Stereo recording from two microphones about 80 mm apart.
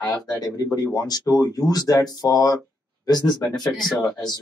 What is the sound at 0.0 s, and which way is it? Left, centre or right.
Speech, left.